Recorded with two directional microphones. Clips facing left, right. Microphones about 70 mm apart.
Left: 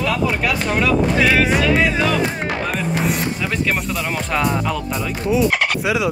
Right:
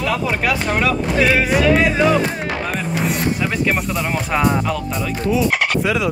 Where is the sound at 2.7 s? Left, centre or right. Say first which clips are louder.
Even; centre.